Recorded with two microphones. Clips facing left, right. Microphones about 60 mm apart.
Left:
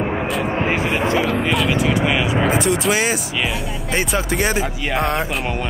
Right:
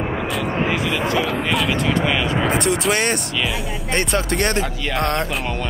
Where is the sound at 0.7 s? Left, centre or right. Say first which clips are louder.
Left 2 dB; left.